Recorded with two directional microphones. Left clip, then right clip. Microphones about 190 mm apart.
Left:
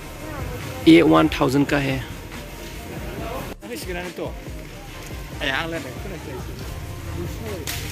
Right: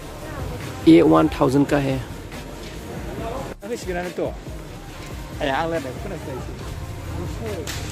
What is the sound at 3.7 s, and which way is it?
Speech, 40° right (ahead or behind).